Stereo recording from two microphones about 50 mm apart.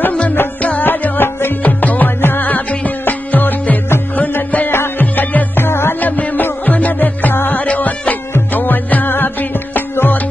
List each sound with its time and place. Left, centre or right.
0.6 s music: left
1.6 s music: left
4.6 s music: left
5.7 s music: left
6.0 s music: left
7.6 s music: left